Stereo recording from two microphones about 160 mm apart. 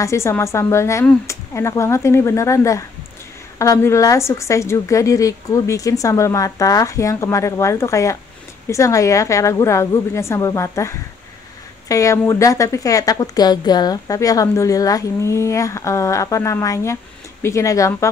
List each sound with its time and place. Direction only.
0.0 s a woman's voice: 15° left (ahead or behind)